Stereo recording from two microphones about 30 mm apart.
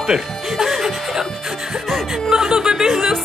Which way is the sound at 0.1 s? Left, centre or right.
Right.